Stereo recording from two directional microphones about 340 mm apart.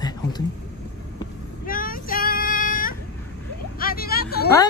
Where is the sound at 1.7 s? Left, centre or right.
Left.